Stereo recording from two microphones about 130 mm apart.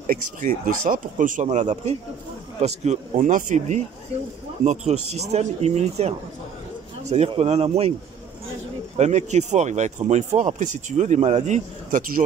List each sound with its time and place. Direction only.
0.0 s speech: 90° right; by 6.1 s 55° right (ahead or behind)
7.2 s speech: 55° right (ahead or behind)
8.9 s speech: 65° right (ahead or behind)